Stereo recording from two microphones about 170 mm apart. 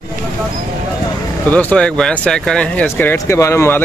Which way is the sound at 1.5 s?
5° left (ahead or behind).